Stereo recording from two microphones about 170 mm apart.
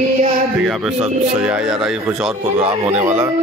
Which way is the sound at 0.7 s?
5° right (ahead or behind).